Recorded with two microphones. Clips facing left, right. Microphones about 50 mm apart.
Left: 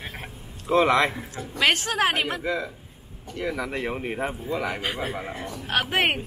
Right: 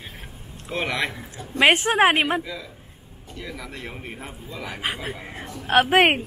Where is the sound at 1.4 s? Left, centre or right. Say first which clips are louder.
Right 5 dB; right.